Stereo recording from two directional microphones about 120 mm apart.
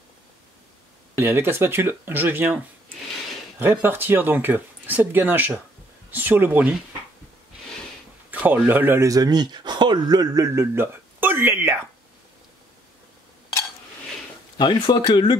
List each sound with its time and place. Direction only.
1.1 s speech: 20° right (ahead or behind)
3.8 s speech: 15° right (ahead or behind)
8.3 s speech: 15° right (ahead or behind)
14.6 s speech: 40° left (ahead or behind)